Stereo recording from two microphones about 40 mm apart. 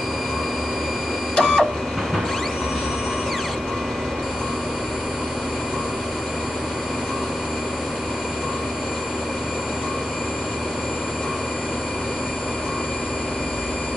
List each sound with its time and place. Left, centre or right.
1.3 s printer: centre